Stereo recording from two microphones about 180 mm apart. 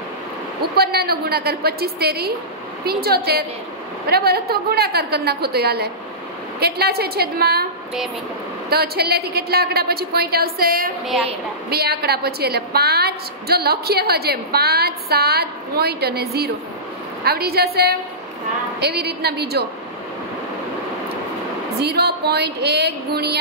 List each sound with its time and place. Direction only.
0.7 s a woman's voice: 60° right (ahead or behind)
8.6 s a woman's voice: 60° right (ahead or behind)
21.7 s a woman's voice: 65° right (ahead or behind)